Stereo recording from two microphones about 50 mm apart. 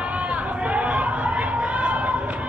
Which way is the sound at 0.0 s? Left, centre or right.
Right.